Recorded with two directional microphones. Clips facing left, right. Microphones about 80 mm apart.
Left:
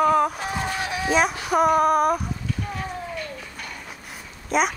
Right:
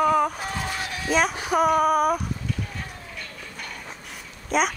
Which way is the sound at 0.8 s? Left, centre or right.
Centre.